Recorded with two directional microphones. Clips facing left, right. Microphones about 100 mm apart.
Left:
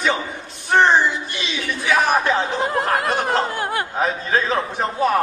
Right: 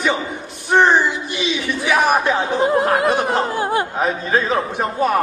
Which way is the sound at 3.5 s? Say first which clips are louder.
Right 4 dB; 25° right (ahead or behind).